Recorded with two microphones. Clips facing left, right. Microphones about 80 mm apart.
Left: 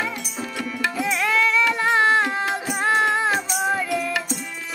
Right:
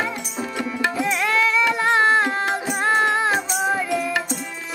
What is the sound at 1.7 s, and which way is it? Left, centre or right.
Music, centre.